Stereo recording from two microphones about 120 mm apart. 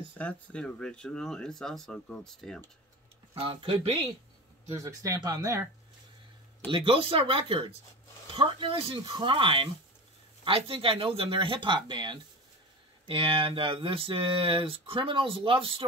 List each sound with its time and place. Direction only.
0.2 s speech: 10° left (ahead or behind)
3.3 s speech: 50° right (ahead or behind)
4.7 s speech: 25° right (ahead or behind)
6.7 s speech: 45° right (ahead or behind)